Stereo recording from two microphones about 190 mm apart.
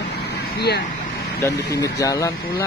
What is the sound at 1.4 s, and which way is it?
A man's voice, 15° left (ahead or behind).